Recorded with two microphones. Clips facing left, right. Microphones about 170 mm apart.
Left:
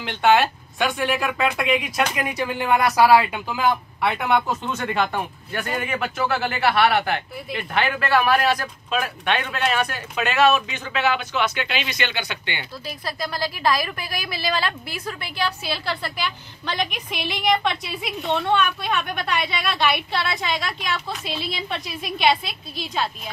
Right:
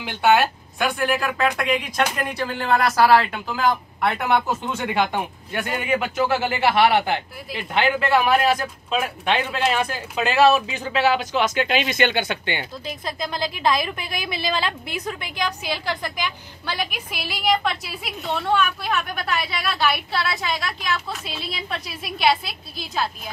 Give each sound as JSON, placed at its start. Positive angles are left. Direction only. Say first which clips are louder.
{"t": 0.0, "sound": "a woman's voice", "louder": "even", "side_deg": -5}
{"t": 12.8, "sound": "a woman's voice", "louder": "right 1 dB", "side_deg": -20}